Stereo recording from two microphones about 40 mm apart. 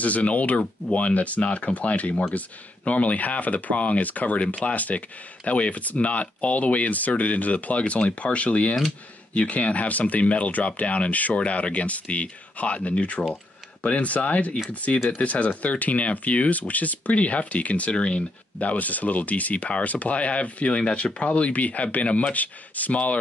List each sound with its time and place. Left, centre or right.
0.0 s speech: left
17.9 s speech: left
18.6 s speech: left